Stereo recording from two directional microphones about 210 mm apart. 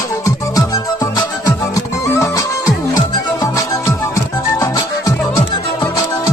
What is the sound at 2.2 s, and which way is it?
Music, 15° left (ahead or behind).